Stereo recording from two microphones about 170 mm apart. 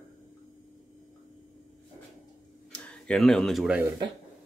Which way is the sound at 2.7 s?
5° left (ahead or behind).